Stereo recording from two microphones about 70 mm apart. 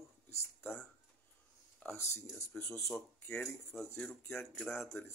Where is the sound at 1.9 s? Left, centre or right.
Left.